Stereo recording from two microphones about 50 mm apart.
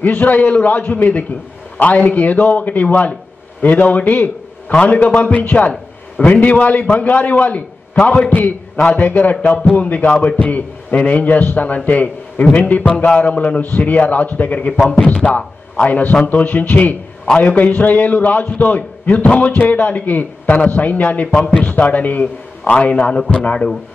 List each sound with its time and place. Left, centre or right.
0.0 s a man's voice: left
8.7 s a man's voice: left
9.0 s a man's voice: left